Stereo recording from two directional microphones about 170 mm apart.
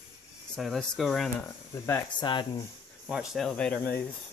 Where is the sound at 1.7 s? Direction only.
15° left (ahead or behind).